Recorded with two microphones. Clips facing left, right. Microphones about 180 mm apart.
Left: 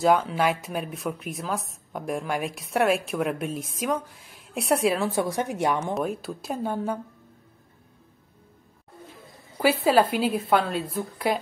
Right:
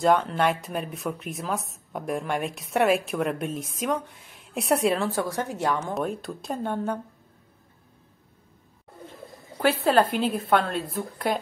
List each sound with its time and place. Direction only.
0.0 s speech: 5° left (ahead or behind)
5.1 s a woman's voice: 15° left (ahead or behind)
5.9 s speech: 5° left (ahead or behind)
9.6 s speech: 5° left (ahead or behind)